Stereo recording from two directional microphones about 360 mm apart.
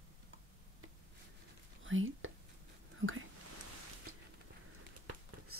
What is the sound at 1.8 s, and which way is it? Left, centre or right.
Whispering, right.